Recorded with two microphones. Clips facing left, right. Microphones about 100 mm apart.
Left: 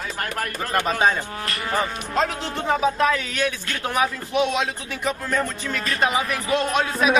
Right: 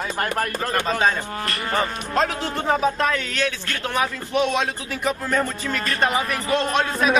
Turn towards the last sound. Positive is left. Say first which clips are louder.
# even
turn(degrees=0)  # may be behind; listen again after turning